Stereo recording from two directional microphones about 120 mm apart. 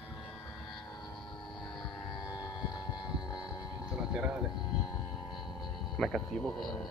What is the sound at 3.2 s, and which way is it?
Boat, 35° left (ahead or behind).